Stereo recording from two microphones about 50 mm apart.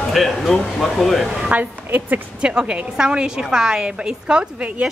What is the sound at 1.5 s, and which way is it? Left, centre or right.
Speech, right.